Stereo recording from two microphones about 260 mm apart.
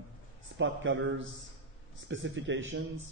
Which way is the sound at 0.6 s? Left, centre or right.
Right.